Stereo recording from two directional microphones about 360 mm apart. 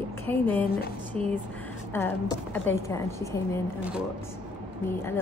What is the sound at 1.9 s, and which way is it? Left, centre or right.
A woman's voice, centre.